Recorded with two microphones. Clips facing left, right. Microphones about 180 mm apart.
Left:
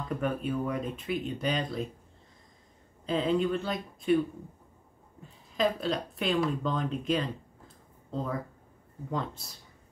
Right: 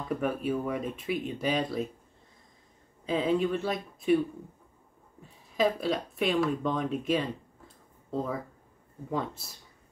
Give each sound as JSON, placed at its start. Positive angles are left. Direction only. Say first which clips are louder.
{"t": 0.2, "sound": "speech", "louder": "even", "side_deg": -5}
{"t": 3.1, "sound": "speech", "louder": "even", "side_deg": -5}
{"t": 5.6, "sound": "speech", "louder": "right 1 dB", "side_deg": -5}
{"t": 7.6, "sound": "a sound", "louder": "even", "side_deg": -5}